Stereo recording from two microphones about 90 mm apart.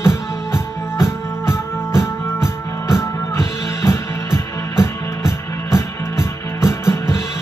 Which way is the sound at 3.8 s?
30° left (ahead or behind).